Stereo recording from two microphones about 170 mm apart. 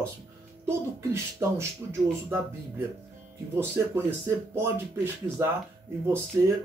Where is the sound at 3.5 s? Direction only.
15° right (ahead or behind).